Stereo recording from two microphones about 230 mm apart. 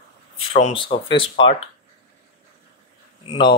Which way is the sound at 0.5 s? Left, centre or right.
Left.